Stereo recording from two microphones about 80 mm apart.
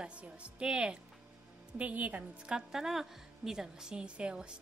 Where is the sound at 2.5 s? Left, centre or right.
Centre.